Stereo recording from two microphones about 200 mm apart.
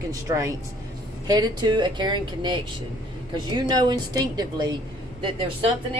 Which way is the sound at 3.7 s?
20° right (ahead or behind).